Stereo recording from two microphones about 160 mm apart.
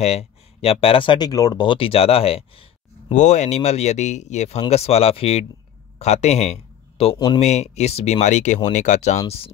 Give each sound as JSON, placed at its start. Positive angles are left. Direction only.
{"t": 0.0, "sound": "speech", "side_deg": 40}